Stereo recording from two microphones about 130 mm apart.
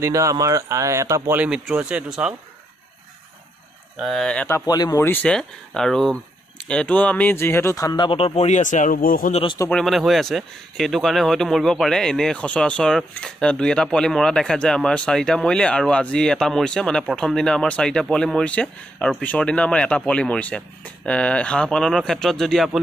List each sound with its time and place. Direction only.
0.0 s speech: 25° right (ahead or behind)
1.4 s speech: 10° right (ahead or behind)
4.0 s speech: centre (ahead or behind)
4.5 s speech: 25° left (ahead or behind)
5.0 s speech: 10° left (ahead or behind)
8.0 s a man's voice: 45° left (ahead or behind); by 9.4 s 90° left
9.7 s speech: 5° left (ahead or behind)